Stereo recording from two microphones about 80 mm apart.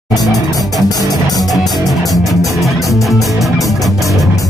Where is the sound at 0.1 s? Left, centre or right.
Left.